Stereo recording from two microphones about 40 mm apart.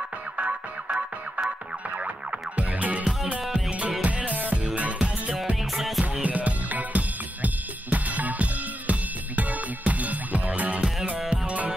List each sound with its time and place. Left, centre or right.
0.4 s music: right
2.0 s music: right
5.6 s music: centre
6.2 s drum kit: right
9.4 s music: right
11.1 s music: right